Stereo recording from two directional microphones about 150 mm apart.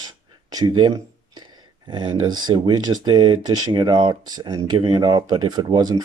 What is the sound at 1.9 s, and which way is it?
Speech, 30° right (ahead or behind).